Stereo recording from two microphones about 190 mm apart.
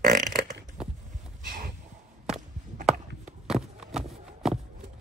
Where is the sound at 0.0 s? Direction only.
45° right (ahead or behind).